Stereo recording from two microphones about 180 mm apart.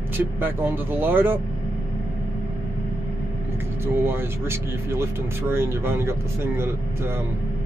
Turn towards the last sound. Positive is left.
turn(degrees=-15)  # may be behind; listen again after turning